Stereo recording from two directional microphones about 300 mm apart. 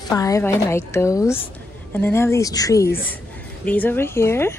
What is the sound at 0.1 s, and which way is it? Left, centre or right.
A woman's voice, centre.